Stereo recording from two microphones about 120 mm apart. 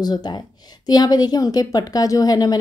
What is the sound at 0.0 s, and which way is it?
A woman's voice, 35° left (ahead or behind).